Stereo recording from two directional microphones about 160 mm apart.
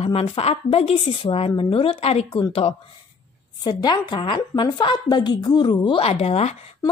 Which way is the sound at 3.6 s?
25° left (ahead or behind).